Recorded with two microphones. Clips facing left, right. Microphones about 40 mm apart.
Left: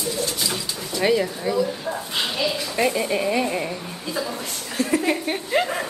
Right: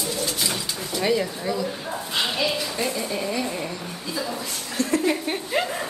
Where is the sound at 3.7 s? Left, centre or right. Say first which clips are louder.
Left 2 dB; centre.